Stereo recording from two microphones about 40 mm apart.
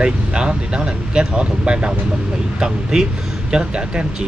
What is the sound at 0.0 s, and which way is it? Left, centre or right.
Speech, right.